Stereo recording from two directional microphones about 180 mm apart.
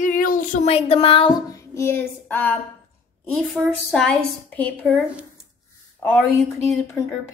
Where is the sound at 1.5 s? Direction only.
15° left (ahead or behind).